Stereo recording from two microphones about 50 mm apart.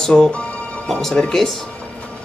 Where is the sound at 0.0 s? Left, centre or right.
Centre.